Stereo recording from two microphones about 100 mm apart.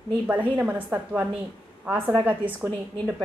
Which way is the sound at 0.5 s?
15° right (ahead or behind).